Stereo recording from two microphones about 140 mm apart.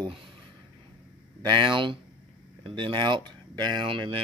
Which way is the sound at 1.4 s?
35° right (ahead or behind).